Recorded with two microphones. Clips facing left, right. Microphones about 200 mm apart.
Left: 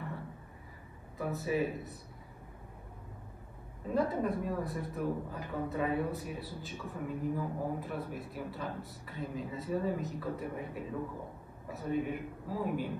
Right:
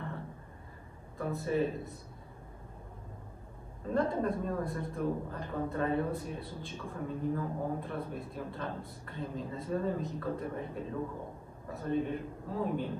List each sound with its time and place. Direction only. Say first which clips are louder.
1.1 s speech: right 1 dB; 5° left (ahead or behind)
3.9 s a man's voice: right 1 dB; 5° left (ahead or behind)